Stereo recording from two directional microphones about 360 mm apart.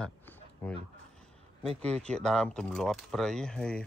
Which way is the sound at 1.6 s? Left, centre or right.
Centre.